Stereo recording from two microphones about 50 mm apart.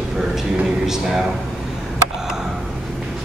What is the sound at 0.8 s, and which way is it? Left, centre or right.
Speech, centre.